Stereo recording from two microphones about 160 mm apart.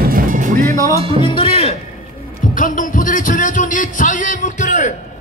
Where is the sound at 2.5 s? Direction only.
55° left (ahead or behind).